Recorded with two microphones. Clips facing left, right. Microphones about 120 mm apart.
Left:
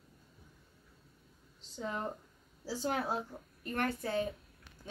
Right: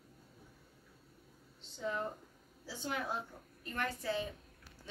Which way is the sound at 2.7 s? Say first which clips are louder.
Left 6 dB; 40° left (ahead or behind).